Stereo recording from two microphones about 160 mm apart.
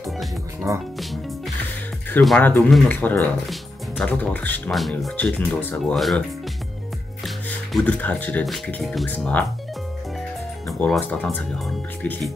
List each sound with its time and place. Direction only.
0.7 s speech: 20° right (ahead or behind)
2.2 s speech: 10° left (ahead or behind)
7.2 s speech: 5° left (ahead or behind)
10.7 s speech: 5° left (ahead or behind)